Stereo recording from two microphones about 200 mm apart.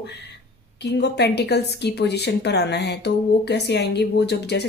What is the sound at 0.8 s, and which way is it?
Speech, 55° left (ahead or behind).